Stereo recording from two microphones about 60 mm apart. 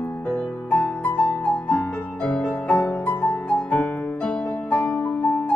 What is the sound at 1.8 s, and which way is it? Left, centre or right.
Music, left.